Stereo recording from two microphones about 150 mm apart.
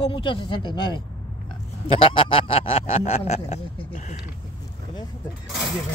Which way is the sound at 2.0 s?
35° left (ahead or behind).